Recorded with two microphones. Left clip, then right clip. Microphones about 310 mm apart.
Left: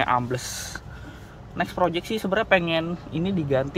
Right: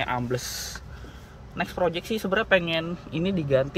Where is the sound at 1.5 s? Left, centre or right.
Centre.